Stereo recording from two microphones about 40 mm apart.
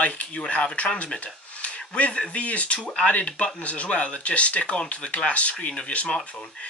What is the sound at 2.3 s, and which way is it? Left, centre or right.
Speech, left.